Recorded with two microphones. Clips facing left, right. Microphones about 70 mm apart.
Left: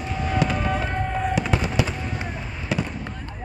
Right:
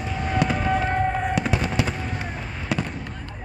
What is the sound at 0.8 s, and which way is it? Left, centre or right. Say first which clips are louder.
Fireworks: right 3 dB; right.